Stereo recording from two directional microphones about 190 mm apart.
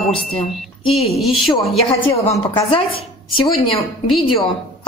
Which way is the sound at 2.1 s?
15° left (ahead or behind).